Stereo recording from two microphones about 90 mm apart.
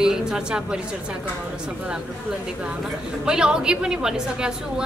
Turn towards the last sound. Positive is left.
turn(degrees=-10)  # may be behind; listen again after turning